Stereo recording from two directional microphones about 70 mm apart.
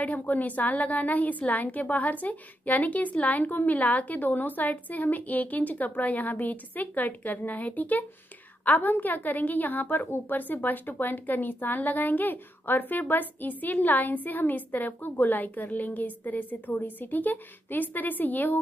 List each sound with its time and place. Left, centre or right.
0.0 s a woman's voice: left